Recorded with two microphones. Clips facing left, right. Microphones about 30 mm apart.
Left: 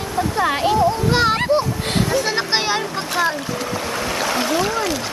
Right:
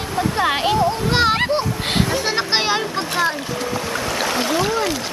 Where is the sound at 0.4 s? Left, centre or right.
Right.